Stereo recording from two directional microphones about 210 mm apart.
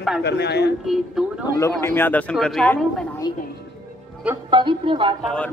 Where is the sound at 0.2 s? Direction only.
55° left (ahead or behind).